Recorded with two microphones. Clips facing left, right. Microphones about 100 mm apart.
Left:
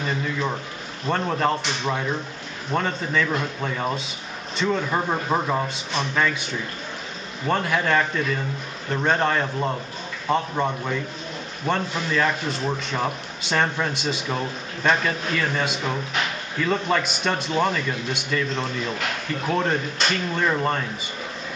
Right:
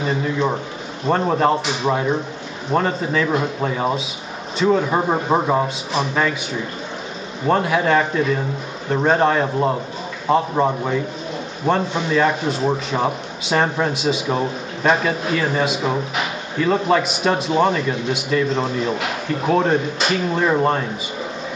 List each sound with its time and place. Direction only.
0.0 s a sound: 5° right (ahead or behind)
1.1 s a man's voice: 5° right (ahead or behind)
5.9 s a man's voice: 5° right (ahead or behind)
7.4 s a man's voice: 5° right (ahead or behind)
11.7 s a man's voice: 5° right (ahead or behind)